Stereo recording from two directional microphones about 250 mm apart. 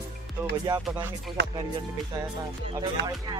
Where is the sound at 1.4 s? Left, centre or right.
Right.